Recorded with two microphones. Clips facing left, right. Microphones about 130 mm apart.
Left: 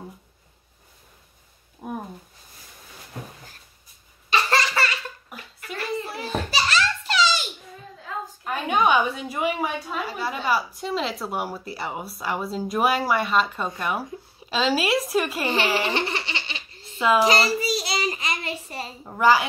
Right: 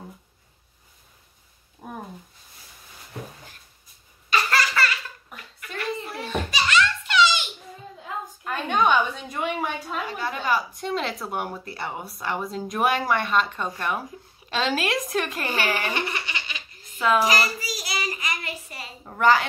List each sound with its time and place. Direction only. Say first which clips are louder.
1.8 s a sound: left 4 dB; 10° left (ahead or behind)
4.3 s laughter: left 1 dB; 25° left (ahead or behind)
6.2 s giggle: right 1 dB; 35° left (ahead or behind)
8.5 s a sound: left 1 dB; 10° left (ahead or behind)
11.7 s speech: left 1 dB; 5° left (ahead or behind)
15.4 s baby laughter: left 3 dB; 25° left (ahead or behind)
17.2 s child singing: left 3 dB; 30° left (ahead or behind)
19.0 s a woman's voice: left 1 dB; 10° left (ahead or behind)